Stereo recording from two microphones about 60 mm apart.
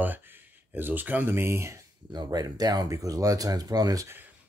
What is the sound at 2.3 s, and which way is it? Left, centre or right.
Speech, right.